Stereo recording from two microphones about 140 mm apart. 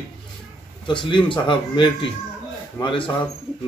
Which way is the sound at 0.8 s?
35° left (ahead or behind).